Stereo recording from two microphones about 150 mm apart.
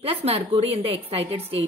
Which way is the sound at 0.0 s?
40° right (ahead or behind).